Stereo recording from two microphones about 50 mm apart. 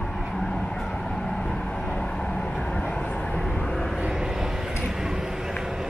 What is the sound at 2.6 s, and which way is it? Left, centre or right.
Vehicle, left.